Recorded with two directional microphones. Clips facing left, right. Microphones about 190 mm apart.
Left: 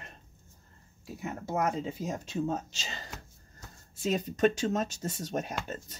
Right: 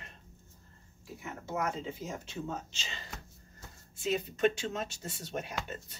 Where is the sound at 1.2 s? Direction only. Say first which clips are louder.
Left 4 dB; 35° left (ahead or behind).